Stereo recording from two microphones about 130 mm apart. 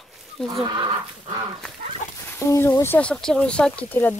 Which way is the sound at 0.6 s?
35° right (ahead or behind).